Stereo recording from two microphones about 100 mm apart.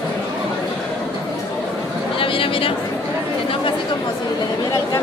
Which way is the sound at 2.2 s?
65° left (ahead or behind).